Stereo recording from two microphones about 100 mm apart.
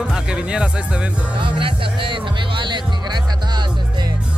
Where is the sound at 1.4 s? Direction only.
55° right (ahead or behind).